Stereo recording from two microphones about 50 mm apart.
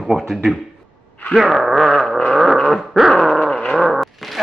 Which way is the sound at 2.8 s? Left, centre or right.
Centre.